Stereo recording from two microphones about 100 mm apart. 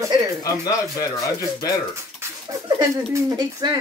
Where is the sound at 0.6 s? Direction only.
35° left (ahead or behind).